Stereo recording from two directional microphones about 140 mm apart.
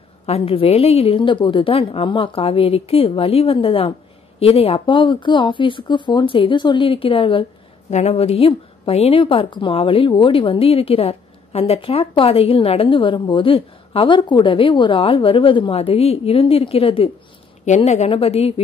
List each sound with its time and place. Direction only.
0.3 s a woman's voice: 45° left (ahead or behind)
7.9 s a woman's voice: 50° left (ahead or behind)
17.6 s a woman's voice: 55° left (ahead or behind)